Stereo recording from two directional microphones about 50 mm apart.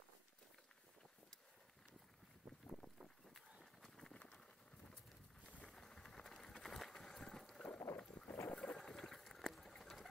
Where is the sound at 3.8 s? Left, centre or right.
Centre.